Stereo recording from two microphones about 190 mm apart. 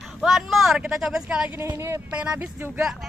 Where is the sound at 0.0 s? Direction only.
Centre (ahead or behind).